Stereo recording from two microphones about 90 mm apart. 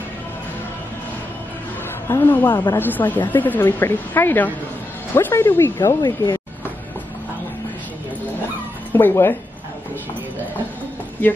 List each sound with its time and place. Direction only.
2.0 s speech: 30° left (ahead or behind)
2.5 s speech: 45° left (ahead or behind)
2.8 s speech: 20° left (ahead or behind)
5.9 s speech: 45° left (ahead or behind)
8.9 s speech: 25° left (ahead or behind)
11.2 s speech: 20° left (ahead or behind)